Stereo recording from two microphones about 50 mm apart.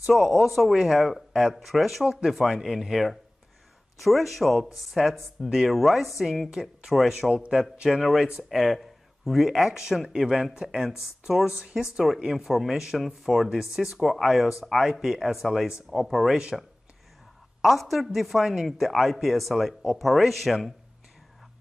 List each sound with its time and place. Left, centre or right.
0.0 s a man's voice: centre
8.0 s a man's voice: centre
11.4 s speech: centre
11.7 s a man's voice: centre
17.6 s a man's voice: centre